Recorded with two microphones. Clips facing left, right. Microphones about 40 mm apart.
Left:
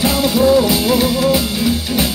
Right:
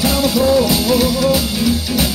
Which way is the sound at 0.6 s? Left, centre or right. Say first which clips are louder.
Even; centre.